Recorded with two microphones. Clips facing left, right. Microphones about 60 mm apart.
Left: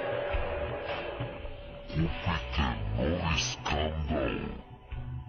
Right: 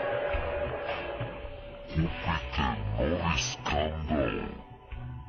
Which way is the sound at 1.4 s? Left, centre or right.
Centre.